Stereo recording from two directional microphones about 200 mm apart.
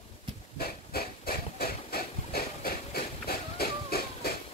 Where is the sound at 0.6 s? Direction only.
50° left (ahead or behind).